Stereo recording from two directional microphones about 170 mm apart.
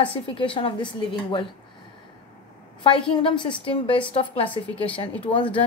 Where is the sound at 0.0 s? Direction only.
30° left (ahead or behind).